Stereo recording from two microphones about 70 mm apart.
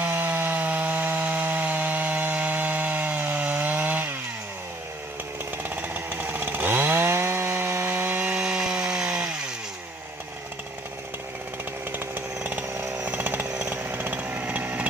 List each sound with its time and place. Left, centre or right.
0.0 s wood: right
5.6 s chainsaw: right
8.4 s wood: centre
13.2 s chainsaw: right